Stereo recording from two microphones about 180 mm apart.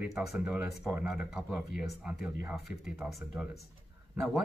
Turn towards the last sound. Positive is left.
turn(degrees=0)  # may be behind; listen again after turning